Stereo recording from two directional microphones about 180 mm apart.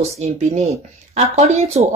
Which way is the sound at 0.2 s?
40° right (ahead or behind).